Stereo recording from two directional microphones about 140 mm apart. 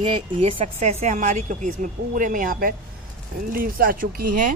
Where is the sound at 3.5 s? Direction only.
90° right.